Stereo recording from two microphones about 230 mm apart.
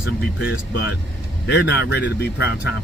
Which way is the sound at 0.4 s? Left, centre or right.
Left.